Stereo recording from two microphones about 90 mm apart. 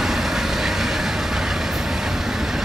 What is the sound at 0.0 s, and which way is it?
Train, 5° right (ahead or behind).